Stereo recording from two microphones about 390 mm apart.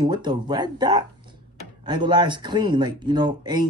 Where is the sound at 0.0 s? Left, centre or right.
Centre.